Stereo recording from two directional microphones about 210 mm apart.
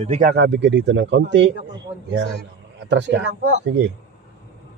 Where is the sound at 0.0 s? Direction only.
35° right (ahead or behind).